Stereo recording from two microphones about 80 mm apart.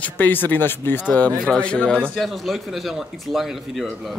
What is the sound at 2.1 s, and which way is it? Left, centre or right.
A man's voice, centre.